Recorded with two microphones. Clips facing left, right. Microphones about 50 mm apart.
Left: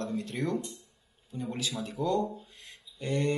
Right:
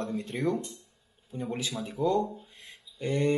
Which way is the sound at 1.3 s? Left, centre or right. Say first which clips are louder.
Right 1 dB; centre.